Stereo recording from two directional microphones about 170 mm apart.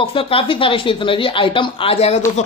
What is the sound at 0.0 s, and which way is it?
Speech, 30° left (ahead or behind).